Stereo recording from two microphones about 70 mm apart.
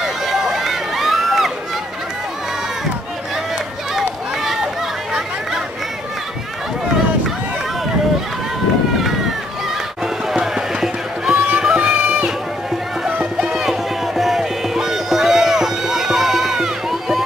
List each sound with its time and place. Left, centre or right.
0.0 s run: centre
10.0 s music: centre
11.3 s music: centre